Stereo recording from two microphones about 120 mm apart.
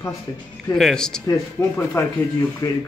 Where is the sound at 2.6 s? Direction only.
30° left (ahead or behind).